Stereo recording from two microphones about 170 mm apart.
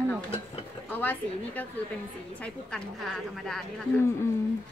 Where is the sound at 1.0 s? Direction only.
10° left (ahead or behind).